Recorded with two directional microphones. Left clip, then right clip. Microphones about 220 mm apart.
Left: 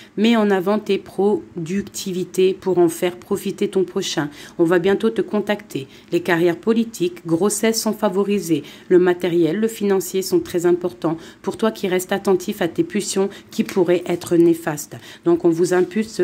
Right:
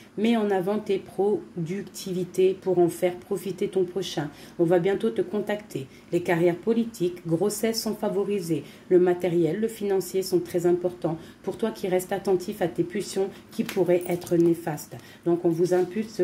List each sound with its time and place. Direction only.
0.2 s speech: 40° left (ahead or behind)